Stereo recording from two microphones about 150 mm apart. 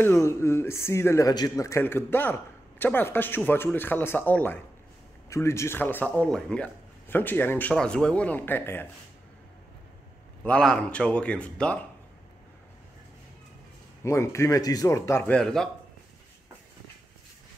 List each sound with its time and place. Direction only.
0.0 s speech: 20° left (ahead or behind)
10.4 s speech: 5° left (ahead or behind)
14.0 s speech: 20° left (ahead or behind); by 15.7 s 5° left (ahead or behind)